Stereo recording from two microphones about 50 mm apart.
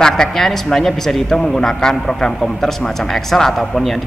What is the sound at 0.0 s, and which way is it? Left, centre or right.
A man's voice, centre.